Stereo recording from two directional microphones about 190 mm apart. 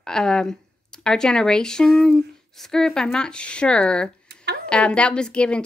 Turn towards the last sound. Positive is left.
turn(degrees=5)  # may be behind; listen again after turning